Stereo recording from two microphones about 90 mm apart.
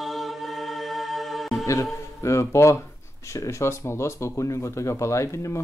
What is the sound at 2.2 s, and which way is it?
Speech, 35° left (ahead or behind).